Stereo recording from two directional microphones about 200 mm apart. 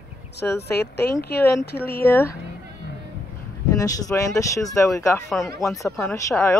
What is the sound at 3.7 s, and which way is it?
Speech, 15° left (ahead or behind).